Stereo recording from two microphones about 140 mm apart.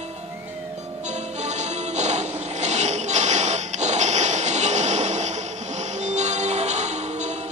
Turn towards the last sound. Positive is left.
turn(degrees=-55)  # may be behind; listen again after turning